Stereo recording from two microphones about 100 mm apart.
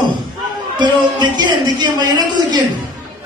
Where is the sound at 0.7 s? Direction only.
50° right (ahead or behind).